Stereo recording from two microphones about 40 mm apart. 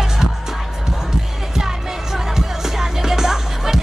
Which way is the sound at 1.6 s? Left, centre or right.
Centre.